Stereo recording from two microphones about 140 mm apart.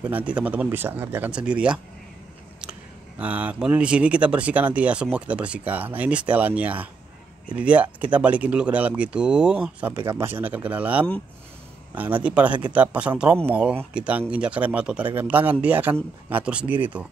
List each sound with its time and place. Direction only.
0.0 s speech: 10° right (ahead or behind)
3.2 s speech: 10° right (ahead or behind)